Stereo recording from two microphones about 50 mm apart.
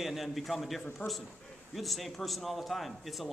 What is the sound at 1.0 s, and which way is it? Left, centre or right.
Speech, left.